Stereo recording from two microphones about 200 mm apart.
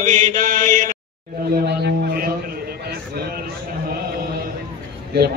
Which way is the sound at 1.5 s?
55° right (ahead or behind).